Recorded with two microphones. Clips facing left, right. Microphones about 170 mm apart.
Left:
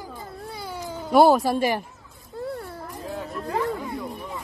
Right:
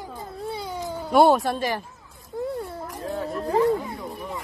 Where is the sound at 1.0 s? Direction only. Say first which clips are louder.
Left 1 dB; centre (ahead or behind).